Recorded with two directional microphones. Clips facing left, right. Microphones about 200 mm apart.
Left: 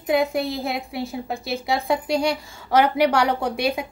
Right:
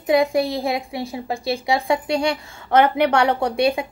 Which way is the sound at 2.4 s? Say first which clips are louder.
Even; 60° right (ahead or behind).